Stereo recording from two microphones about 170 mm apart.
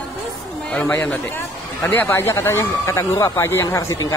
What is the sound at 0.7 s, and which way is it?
A man's voice, 10° left (ahead or behind).